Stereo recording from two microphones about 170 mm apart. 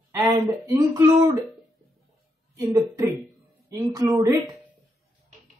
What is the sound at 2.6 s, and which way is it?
A man's voice, 20° right (ahead or behind).